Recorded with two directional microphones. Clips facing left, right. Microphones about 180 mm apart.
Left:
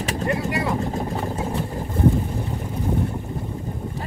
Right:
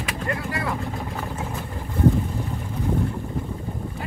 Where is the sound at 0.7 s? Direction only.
35° left (ahead or behind).